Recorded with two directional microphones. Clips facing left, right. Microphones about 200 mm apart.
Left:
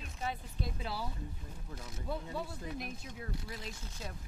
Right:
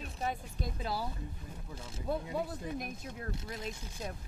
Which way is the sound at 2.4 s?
50° right (ahead or behind).